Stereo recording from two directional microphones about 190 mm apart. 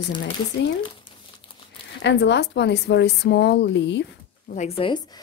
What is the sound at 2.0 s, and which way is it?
Speech, 65° left (ahead or behind).